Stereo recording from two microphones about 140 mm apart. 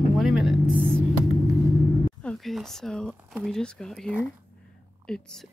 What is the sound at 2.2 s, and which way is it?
Speech, 5° left (ahead or behind).